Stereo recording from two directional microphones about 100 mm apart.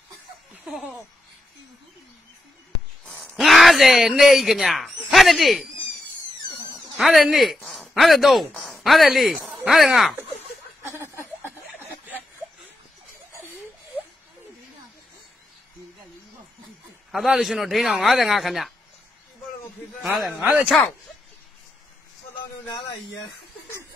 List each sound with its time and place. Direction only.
3.1 s speech: 5° left (ahead or behind)
7.0 s a man's voice: centre (ahead or behind)
10.8 s a sound: 25° right (ahead or behind)
17.1 s a man's voice: centre (ahead or behind)
20.0 s a man's voice: centre (ahead or behind)